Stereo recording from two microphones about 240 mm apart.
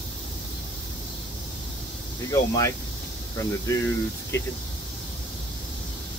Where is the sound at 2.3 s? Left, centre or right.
Centre.